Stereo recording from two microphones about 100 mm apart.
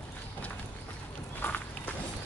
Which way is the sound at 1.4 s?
15° left (ahead or behind).